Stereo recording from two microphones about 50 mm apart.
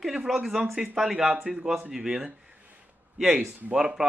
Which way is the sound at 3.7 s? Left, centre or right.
Right.